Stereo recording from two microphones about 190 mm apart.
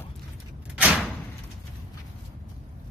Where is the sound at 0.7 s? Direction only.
5° right (ahead or behind).